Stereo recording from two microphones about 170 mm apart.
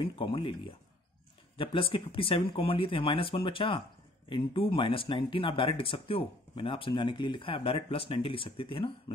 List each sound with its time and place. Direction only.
0.0 s speech: 30° left (ahead or behind)